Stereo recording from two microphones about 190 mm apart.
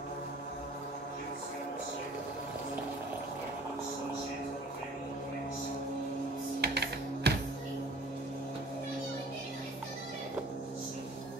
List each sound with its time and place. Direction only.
6.6 s music: 60° right (ahead or behind)